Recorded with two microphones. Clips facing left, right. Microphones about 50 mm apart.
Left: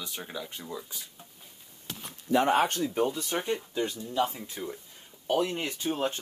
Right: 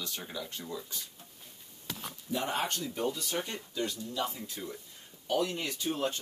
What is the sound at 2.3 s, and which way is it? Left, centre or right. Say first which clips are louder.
Speech: left 10 dB; left.